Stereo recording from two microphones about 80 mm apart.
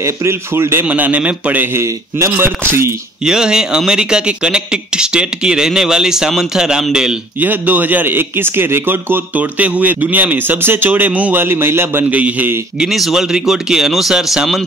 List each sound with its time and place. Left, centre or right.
0.0 s speech: right
0.8 s speech: right
1.8 s speech: right
3.3 s speech: centre
7.3 s speech: right
12.8 s speech: centre